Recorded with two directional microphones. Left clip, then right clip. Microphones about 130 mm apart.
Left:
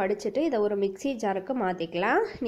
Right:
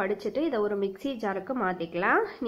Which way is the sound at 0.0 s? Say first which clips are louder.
Left 2 dB; 30° left (ahead or behind).